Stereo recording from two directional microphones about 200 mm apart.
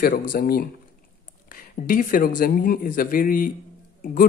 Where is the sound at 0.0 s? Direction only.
45° left (ahead or behind).